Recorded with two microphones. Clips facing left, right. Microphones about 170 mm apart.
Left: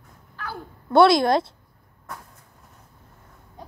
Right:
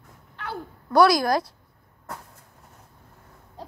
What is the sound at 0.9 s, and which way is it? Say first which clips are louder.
Speech: left 2 dB; 25° left (ahead or behind).